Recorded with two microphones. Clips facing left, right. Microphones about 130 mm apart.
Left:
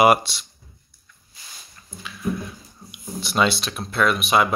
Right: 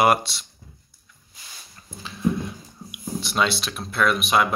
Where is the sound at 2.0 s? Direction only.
30° right (ahead or behind).